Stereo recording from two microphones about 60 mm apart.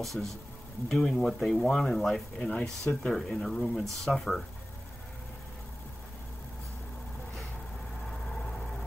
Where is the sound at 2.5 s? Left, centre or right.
Left.